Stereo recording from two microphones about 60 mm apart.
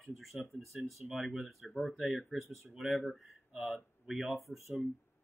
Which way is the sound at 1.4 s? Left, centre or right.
Centre.